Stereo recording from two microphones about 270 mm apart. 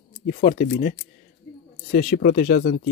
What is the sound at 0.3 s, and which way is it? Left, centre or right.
Speech, left.